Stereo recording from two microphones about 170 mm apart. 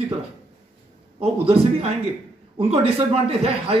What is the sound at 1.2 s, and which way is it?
A man's voice, 35° right (ahead or behind).